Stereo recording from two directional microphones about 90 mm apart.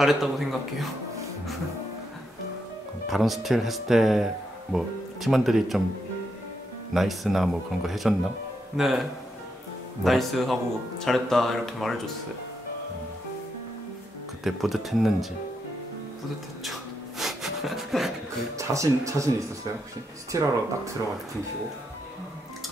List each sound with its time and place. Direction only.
0.0 s speech: centre (ahead or behind)
3.1 s speech: centre (ahead or behind)
6.9 s speech: centre (ahead or behind)
10.0 s speech: centre (ahead or behind)
14.4 s speech: centre (ahead or behind)
17.2 s a sound: 5° right (ahead or behind)
18.6 s speech: 35° right (ahead or behind)